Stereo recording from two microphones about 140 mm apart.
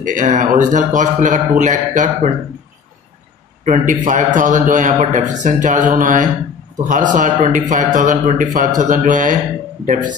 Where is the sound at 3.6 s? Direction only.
60° right (ahead or behind).